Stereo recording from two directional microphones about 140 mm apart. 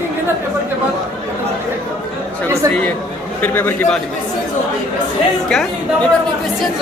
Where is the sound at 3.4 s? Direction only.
15° left (ahead or behind).